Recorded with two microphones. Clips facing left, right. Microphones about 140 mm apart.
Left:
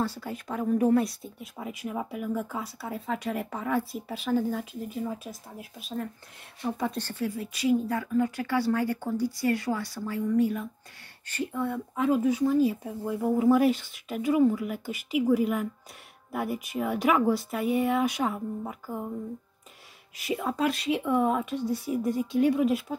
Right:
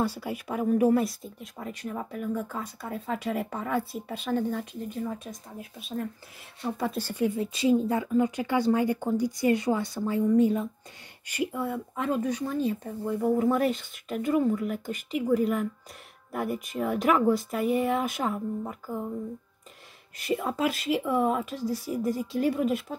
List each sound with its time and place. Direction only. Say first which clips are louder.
0.0 s speech: right 2 dB; 10° right (ahead or behind)
7.2 s speech: right 2 dB; 25° right (ahead or behind)
11.2 s speech: even; 10° right (ahead or behind)
20.2 s speech: even; centre (ahead or behind)